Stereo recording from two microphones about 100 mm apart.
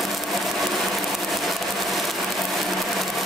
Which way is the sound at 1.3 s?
Centre (ahead or behind).